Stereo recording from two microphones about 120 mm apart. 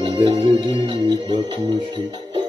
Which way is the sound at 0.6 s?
45° right (ahead or behind).